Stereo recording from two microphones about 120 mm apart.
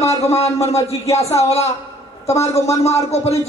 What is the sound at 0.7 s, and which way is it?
Speech, 60° left (ahead or behind).